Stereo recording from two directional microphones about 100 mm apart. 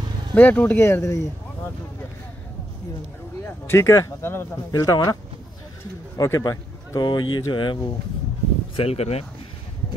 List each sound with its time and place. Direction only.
0.3 s speech: 15° left (ahead or behind)
3.4 s speech: 25° left (ahead or behind)
4.7 s speech: 40° left (ahead or behind)
6.1 s a man's voice: 30° left (ahead or behind)
7.0 s speech: 45° left (ahead or behind)
8.7 s speech: 90° left